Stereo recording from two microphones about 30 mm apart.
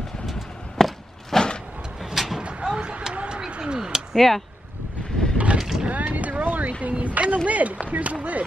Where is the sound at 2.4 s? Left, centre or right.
Right.